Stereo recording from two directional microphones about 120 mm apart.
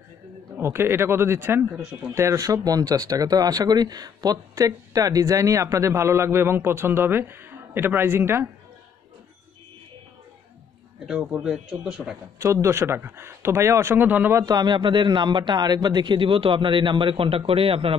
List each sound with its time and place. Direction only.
0.6 s speech: 20° right (ahead or behind)
1.7 s speech: 10° right (ahead or behind)
2.1 s speech: 25° right (ahead or behind)
11.1 s speech: 5° right (ahead or behind)
12.6 s speech: 20° right (ahead or behind)
14.4 s a man's voice: 35° right (ahead or behind); by 17.9 s 50° right (ahead or behind)